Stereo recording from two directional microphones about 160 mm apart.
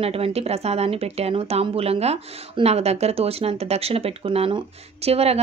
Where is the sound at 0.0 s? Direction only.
40° right (ahead or behind).